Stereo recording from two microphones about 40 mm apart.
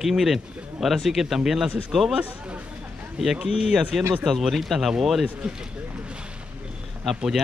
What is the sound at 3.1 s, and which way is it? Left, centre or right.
Speech, centre.